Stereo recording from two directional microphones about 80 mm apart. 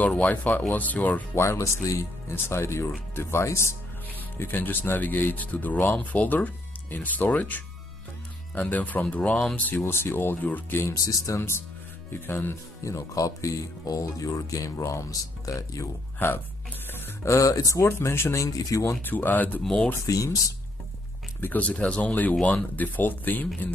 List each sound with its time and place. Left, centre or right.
0.2 s speech: centre
1.4 s speech: left
4.1 s speech: left
9.8 s speech: left
10.8 s speech: left
12.8 s speech: left
16.2 s speech: left
16.9 s a sound: left
17.3 s speech: left
19.0 s speech: left
19.6 s speech: centre
20.1 s speech: left
21.4 s speech: left